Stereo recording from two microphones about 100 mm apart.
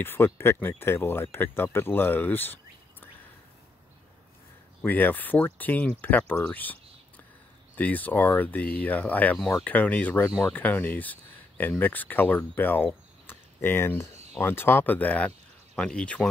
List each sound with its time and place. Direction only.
0.0 s speech: 25° left (ahead or behind)
4.8 s speech: 20° left (ahead or behind)